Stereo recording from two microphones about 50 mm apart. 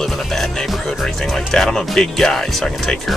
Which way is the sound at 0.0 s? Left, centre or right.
Centre.